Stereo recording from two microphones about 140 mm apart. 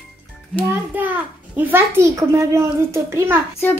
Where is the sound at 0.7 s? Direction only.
10° right (ahead or behind).